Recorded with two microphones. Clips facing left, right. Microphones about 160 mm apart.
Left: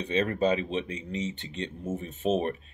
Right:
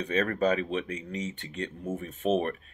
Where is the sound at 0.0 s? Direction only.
25° left (ahead or behind).